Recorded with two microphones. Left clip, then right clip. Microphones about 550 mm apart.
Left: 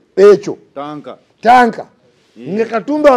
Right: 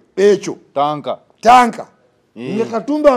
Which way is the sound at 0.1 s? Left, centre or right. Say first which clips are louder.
Left 5 dB; left.